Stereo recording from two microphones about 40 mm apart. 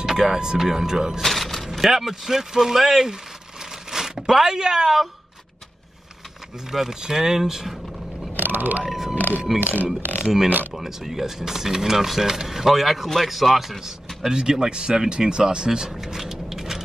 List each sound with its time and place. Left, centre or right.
0.0 s speech: centre
1.2 s a sound: centre
1.7 s speech: centre
6.7 s speech: centre
8.4 s speech: right
8.8 s speech: centre
9.6 s speech: right
10.2 s speech: centre
15.9 s a sound: centre